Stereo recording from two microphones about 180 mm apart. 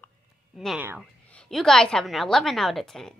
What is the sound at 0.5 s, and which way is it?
A woman's voice, centre (ahead or behind).